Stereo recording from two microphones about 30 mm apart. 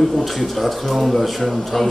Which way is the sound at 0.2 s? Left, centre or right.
Centre.